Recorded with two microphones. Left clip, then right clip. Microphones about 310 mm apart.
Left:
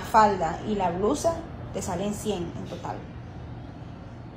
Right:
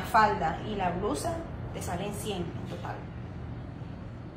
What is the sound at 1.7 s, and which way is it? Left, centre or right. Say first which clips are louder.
Speech: left 5 dB; centre.